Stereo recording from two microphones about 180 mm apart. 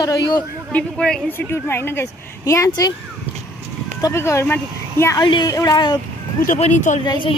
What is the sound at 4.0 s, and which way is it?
A woman's voice, 15° left (ahead or behind).